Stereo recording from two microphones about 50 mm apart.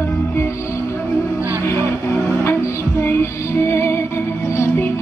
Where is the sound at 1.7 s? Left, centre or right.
Left.